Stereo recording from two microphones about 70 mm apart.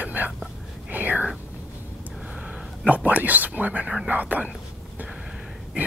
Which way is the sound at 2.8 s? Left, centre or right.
Right.